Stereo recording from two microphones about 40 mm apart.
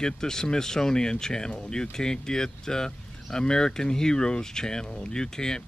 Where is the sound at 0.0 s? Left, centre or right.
Centre.